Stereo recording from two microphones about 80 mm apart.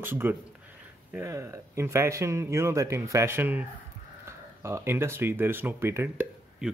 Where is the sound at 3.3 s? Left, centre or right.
Right.